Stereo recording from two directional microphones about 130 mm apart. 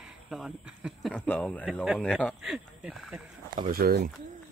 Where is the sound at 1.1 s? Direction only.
10° left (ahead or behind).